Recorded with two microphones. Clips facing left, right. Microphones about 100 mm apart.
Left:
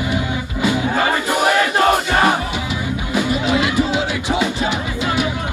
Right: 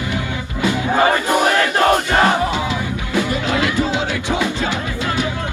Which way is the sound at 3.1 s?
20° left (ahead or behind).